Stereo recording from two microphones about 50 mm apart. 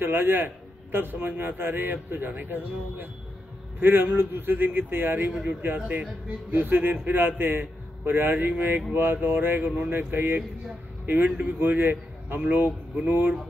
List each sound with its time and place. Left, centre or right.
0.0 s a man's voice: right
5.3 s speech: centre
5.8 s a man's voice: right
6.5 s a man's voice: right